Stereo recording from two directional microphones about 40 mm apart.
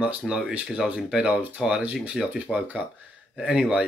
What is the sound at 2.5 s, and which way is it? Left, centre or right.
Speech, left.